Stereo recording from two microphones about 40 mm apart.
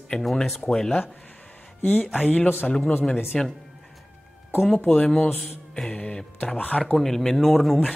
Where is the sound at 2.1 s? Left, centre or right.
Left.